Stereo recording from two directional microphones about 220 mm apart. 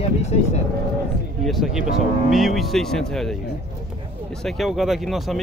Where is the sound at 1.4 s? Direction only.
Centre (ahead or behind).